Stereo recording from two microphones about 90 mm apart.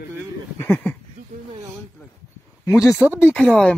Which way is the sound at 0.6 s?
20° left (ahead or behind).